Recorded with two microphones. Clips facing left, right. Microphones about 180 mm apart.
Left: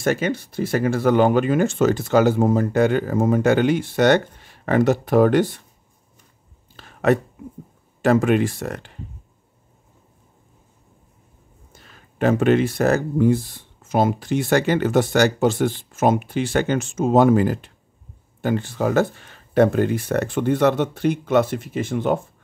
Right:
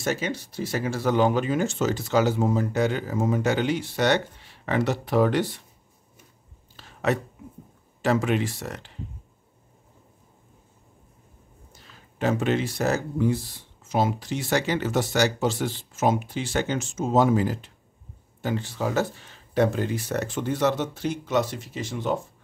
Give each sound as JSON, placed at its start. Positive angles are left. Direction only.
{"t": 0.0, "sound": "speech", "side_deg": 55}
{"t": 6.8, "sound": "a sound", "side_deg": 55}
{"t": 8.0, "sound": "speech", "side_deg": 50}
{"t": 11.7, "sound": "speech", "side_deg": 55}